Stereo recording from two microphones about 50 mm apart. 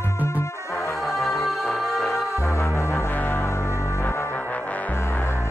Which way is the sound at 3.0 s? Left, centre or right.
Left.